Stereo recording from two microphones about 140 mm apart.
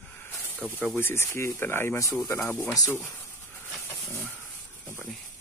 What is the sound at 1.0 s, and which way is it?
Speech, 15° left (ahead or behind).